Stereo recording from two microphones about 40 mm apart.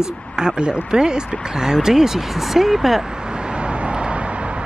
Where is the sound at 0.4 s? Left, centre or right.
Centre.